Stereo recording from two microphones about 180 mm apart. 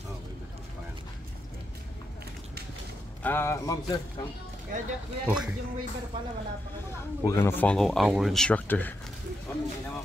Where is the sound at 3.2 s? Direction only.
15° left (ahead or behind).